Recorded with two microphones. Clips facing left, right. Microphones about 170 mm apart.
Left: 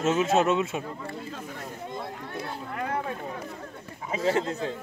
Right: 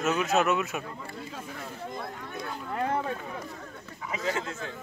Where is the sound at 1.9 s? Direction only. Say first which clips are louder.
Left 2 dB; 30° left (ahead or behind).